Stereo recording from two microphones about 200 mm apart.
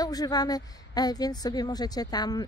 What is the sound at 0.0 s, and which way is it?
A woman's voice, 20° left (ahead or behind).